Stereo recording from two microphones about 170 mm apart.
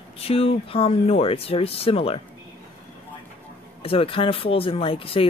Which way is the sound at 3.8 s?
35° left (ahead or behind).